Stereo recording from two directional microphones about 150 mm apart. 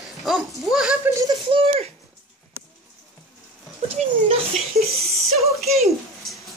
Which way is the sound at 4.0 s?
50° right (ahead or behind).